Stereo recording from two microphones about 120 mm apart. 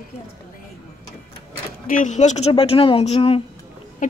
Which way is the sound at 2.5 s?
50° left (ahead or behind).